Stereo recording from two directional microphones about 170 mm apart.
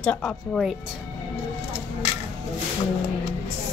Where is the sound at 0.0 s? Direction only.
5° left (ahead or behind).